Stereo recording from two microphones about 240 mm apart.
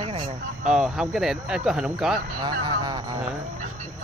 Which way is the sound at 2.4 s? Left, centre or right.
Centre.